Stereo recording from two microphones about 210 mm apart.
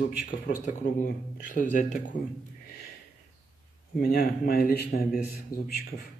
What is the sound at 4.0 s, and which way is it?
Speech, 45° left (ahead or behind).